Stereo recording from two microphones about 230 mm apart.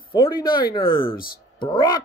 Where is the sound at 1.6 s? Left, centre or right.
Centre.